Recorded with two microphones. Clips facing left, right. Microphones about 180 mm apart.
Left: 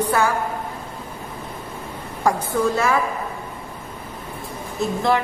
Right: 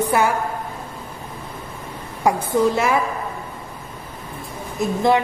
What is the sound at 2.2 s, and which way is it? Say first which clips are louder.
Speech: right 2 dB; 15° right (ahead or behind).